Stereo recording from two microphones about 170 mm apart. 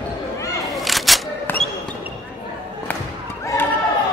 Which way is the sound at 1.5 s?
10° left (ahead or behind).